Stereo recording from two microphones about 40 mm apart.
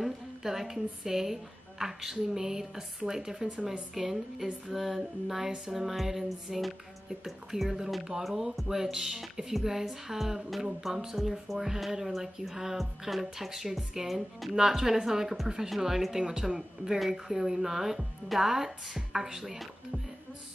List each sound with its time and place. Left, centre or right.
0.0 s a woman's voice: centre
5.7 s music: centre
8.6 s speech: centre
11.1 s music: centre
11.5 s speech: centre